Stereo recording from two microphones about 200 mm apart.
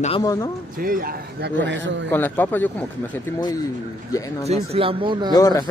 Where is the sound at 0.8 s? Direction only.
45° right (ahead or behind); by 2.1 s 65° right (ahead or behind).